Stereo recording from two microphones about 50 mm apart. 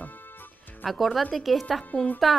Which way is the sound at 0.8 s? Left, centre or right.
Centre.